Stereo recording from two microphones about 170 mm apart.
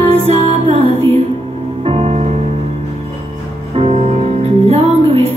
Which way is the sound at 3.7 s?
35° right (ahead or behind).